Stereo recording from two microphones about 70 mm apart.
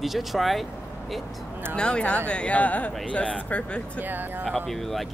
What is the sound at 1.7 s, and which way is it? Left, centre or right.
Speech, centre.